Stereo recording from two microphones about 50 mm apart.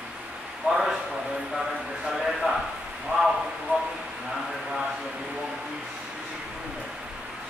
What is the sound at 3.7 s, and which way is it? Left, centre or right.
Speech, right.